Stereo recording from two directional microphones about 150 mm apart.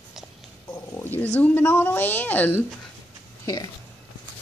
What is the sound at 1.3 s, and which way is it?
A woman's voice, 10° left (ahead or behind).